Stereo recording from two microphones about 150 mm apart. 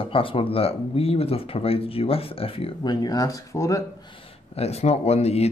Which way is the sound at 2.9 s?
25° left (ahead or behind).